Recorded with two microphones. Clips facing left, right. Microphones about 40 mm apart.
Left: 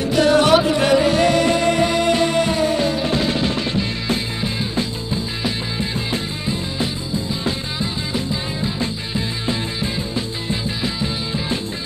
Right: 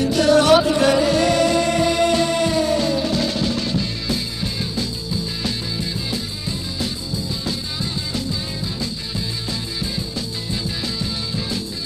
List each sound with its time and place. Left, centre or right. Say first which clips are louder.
0.1 s music: left 1 dB; left
6.8 s music: left 3 dB; left